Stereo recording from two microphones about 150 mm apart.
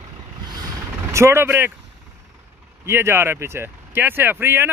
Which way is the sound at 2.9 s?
15° right (ahead or behind).